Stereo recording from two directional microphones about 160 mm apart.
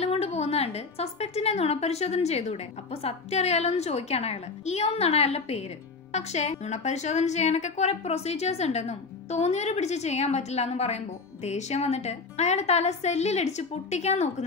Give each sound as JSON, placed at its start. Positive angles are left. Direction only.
{"t": 0.0, "sound": "a woman's voice", "side_deg": 40}